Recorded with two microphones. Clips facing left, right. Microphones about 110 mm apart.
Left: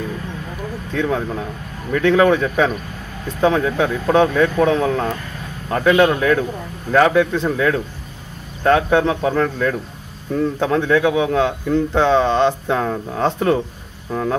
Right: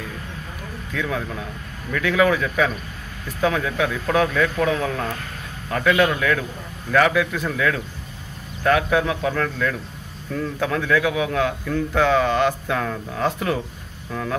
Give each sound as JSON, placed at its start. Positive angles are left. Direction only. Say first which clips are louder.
{"t": 0.9, "sound": "a man's voice", "louder": "left 6 dB", "side_deg": 30}